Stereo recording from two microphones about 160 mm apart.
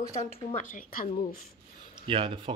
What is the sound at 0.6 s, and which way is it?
Speech, 55° left (ahead or behind).